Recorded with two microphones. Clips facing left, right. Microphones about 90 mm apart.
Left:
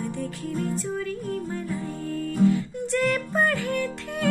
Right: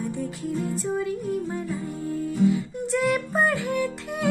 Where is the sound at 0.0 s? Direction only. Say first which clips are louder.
Right 1 dB; 15° right (ahead or behind).